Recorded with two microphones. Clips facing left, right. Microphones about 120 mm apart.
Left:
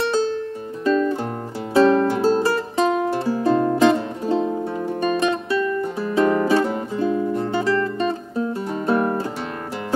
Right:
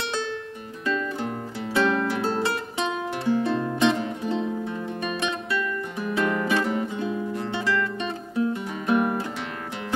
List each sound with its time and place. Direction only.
0.0 s music: 35° left (ahead or behind)